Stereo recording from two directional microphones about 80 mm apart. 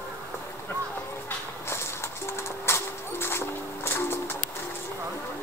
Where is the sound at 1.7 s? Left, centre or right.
Left.